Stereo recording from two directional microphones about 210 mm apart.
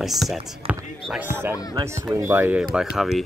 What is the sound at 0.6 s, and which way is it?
Basketball bounce, 25° right (ahead or behind).